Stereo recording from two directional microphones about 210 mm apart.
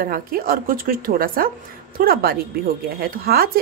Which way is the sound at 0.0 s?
45° right (ahead or behind).